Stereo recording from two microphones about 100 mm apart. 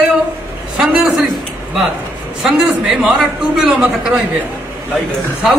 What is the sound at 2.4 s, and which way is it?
A man's voice, 5° right (ahead or behind).